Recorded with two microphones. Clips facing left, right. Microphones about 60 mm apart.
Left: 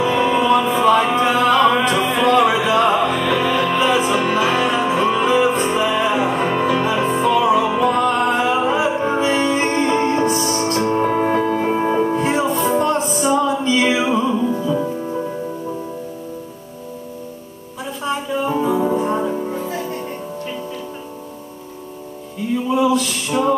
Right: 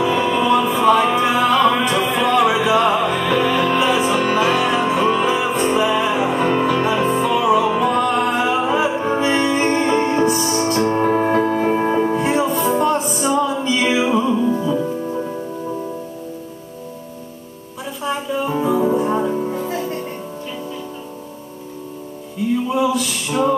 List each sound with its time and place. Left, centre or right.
0.0 s music: centre
18.0 s music: centre
22.7 s music: centre